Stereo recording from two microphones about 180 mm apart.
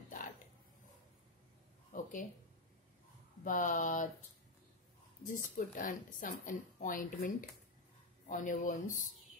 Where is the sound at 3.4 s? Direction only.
45° left (ahead or behind).